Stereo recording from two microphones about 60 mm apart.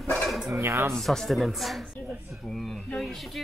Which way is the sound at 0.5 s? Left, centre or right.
Right.